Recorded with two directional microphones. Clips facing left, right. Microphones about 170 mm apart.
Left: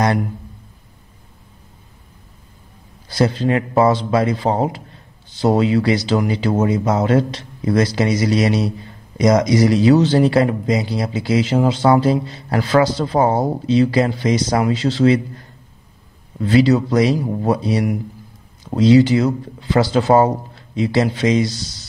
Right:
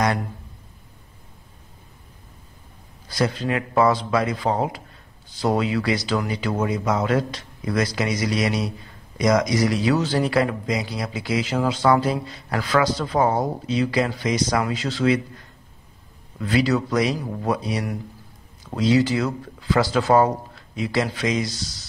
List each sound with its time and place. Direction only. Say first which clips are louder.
3.1 s speech: left 6 dB; 30° left (ahead or behind)
16.3 s speech: left 7 dB; 30° left (ahead or behind)